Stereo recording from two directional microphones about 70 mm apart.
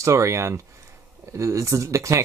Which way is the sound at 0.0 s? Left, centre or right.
Right.